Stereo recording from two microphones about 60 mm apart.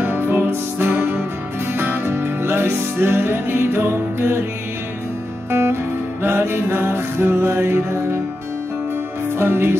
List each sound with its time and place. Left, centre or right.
0.0 s music: right
5.5 s music: right
9.4 s music: right